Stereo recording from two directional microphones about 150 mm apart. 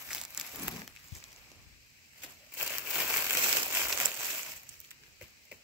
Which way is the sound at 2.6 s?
5° right (ahead or behind).